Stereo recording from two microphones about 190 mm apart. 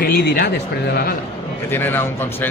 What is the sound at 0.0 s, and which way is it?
Speech, 50° left (ahead or behind).